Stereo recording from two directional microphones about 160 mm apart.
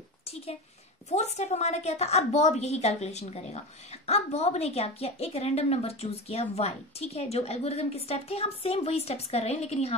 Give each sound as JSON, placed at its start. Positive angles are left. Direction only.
{"t": 1.1, "sound": "a woman's voice", "side_deg": 45}